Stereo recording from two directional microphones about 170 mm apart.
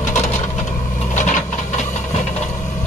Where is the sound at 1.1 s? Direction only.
45° left (ahead or behind).